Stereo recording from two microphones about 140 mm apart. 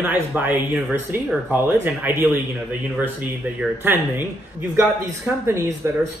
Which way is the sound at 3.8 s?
15° right (ahead or behind).